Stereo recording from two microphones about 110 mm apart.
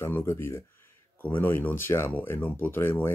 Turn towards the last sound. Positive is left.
turn(degrees=20)  # may be behind; listen again after turning